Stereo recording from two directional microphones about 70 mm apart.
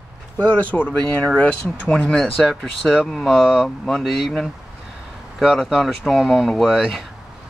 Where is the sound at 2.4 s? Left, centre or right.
Centre.